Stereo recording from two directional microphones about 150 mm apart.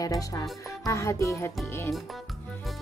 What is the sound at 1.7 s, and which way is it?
Music, 15° left (ahead or behind).